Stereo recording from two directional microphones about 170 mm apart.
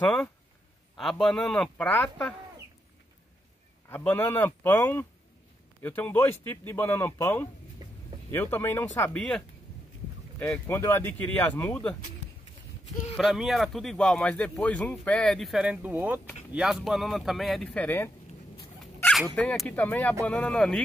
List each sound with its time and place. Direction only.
0.0 s speech: 5° left (ahead or behind)
3.9 s speech: 10° left (ahead or behind)
7.8 s vehicle: 25° right (ahead or behind)
8.3 s speech: 15° left (ahead or behind)
10.4 s speech: 10° left (ahead or behind)
13.1 s speech: centre (ahead or behind)
19.3 s speech: 5° left (ahead or behind)